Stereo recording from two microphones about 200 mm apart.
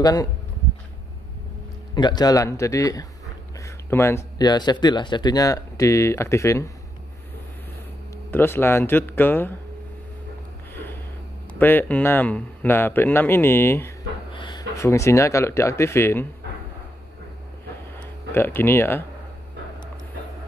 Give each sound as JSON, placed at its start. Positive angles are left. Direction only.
{"t": 0.0, "sound": "speech", "side_deg": 20}
{"t": 2.0, "sound": "speech", "side_deg": 20}
{"t": 3.5, "sound": "a sound", "side_deg": 15}
{"t": 4.4, "sound": "speech", "side_deg": 20}
{"t": 8.3, "sound": "speech", "side_deg": 10}
{"t": 10.7, "sound": "a sound", "side_deg": 10}
{"t": 11.5, "sound": "speech", "side_deg": 10}
{"t": 18.3, "sound": "speech", "side_deg": 10}